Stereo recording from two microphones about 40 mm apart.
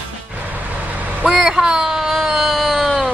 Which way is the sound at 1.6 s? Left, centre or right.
Centre.